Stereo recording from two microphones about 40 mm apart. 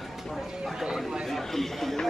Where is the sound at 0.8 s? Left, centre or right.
Centre.